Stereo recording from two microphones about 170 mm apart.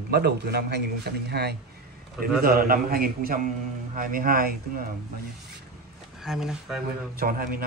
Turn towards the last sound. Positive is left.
turn(degrees=-60)  # may be behind; listen again after turning